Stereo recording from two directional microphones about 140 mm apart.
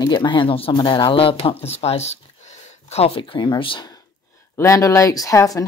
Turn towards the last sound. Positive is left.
turn(degrees=25)  # may be behind; listen again after turning